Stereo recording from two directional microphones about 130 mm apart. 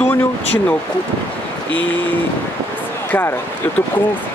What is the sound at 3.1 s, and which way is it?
Speech, 15° left (ahead or behind).